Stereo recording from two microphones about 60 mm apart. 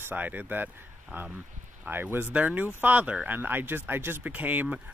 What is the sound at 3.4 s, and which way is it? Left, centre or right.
Speech, right.